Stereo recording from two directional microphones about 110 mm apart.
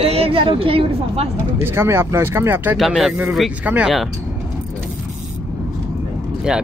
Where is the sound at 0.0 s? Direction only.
60° right (ahead or behind).